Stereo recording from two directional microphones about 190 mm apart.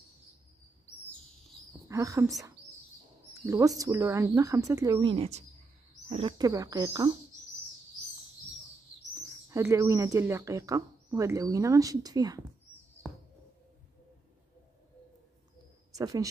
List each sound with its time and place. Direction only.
1.9 s speech: 15° right (ahead or behind)
5.0 s speech: 30° right (ahead or behind)
9.1 s speech: 15° right (ahead or behind)
16.0 s speech: 20° right (ahead or behind)